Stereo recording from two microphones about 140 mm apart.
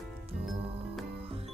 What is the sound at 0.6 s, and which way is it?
Music, 45° right (ahead or behind).